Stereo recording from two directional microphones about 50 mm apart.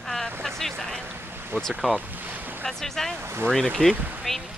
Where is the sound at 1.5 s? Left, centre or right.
Right.